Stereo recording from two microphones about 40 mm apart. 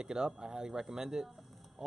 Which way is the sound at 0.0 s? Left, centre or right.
Centre.